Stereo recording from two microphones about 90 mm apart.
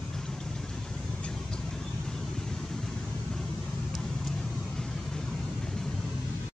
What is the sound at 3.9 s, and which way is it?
Vehicle, 5° left (ahead or behind).